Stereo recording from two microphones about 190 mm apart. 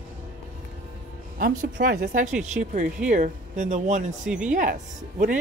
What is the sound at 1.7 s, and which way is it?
Speech, 60° right (ahead or behind).